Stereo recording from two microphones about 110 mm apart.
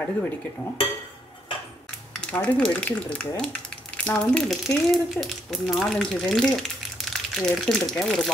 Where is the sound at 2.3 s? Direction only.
10° left (ahead or behind).